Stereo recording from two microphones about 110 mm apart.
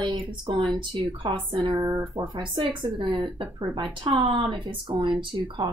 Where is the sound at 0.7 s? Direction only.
40° right (ahead or behind).